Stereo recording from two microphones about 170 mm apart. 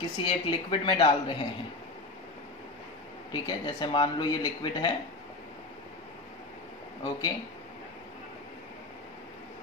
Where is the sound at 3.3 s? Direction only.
25° left (ahead or behind).